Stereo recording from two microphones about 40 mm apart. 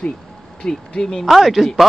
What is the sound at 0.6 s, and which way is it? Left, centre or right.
Speech, left.